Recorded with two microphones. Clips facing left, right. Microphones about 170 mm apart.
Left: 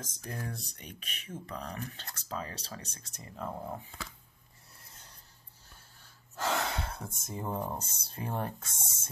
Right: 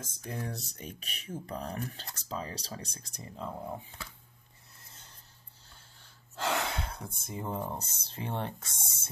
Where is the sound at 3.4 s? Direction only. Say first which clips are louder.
Left 1 dB; 15° left (ahead or behind).